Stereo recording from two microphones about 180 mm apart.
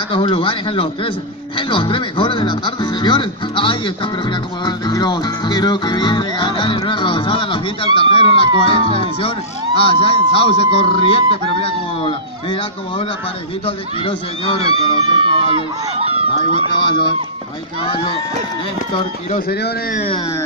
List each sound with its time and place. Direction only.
0.1 s speech: 30° left (ahead or behind)
13.7 s speech: 30° left (ahead or behind)
15.1 s speech: 25° right (ahead or behind)
16.7 s speech: 25° left (ahead or behind)
19.3 s speech: 55° left (ahead or behind)